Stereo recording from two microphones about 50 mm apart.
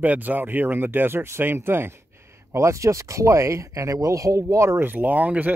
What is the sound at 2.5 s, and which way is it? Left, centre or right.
Speech, right.